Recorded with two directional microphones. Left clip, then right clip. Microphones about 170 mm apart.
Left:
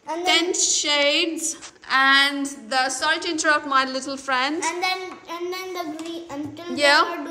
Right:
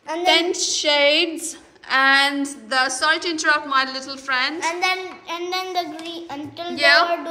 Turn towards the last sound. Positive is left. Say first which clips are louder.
# right 2 dB
turn(degrees=20)  # may be behind; listen again after turning